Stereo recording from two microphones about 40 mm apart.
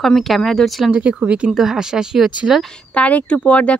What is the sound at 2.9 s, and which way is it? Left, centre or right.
Speech, left.